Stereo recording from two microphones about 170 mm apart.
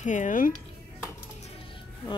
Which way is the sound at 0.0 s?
45° left (ahead or behind).